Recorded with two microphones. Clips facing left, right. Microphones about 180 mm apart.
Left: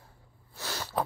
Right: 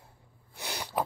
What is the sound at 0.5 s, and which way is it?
Sneeze, 15° right (ahead or behind).